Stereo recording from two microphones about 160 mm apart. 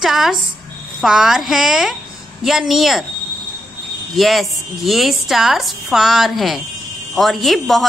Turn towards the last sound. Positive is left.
turn(degrees=0)  # may be behind; listen again after turning